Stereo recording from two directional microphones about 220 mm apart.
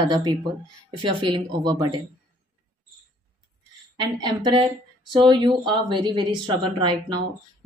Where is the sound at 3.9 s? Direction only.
20° right (ahead or behind).